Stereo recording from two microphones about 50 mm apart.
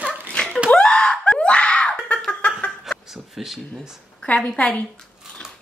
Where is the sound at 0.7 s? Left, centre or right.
Centre.